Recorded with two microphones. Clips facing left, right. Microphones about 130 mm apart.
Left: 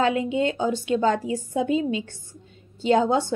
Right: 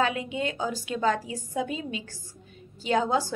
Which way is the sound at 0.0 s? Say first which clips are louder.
Left 5 dB; 25° left (ahead or behind).